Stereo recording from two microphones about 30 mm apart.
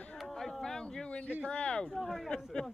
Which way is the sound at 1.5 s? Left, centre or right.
Left.